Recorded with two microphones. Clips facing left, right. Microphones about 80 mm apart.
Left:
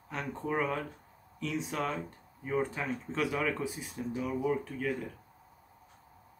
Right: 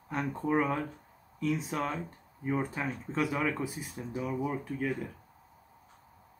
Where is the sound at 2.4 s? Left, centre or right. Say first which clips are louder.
Even; centre.